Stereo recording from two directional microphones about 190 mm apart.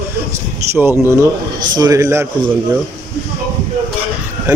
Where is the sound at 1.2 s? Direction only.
20° right (ahead or behind).